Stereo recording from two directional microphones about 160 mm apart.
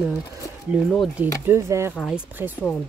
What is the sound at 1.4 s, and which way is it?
Speech, 15° right (ahead or behind).